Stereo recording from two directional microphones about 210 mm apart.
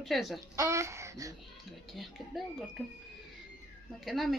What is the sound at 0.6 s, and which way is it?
Speech, 15° right (ahead or behind).